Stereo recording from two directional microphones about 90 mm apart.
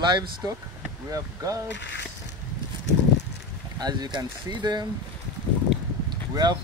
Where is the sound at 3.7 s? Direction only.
50° right (ahead or behind).